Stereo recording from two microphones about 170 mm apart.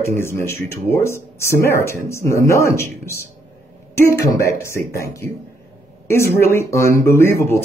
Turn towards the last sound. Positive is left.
turn(degrees=15)  # may be behind; listen again after turning